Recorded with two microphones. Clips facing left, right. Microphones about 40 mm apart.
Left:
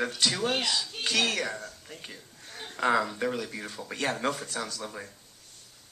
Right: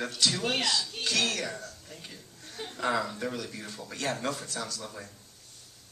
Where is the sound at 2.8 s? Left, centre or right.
Left.